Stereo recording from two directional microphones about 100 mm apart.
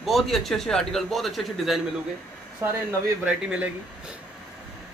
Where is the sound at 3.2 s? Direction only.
15° right (ahead or behind).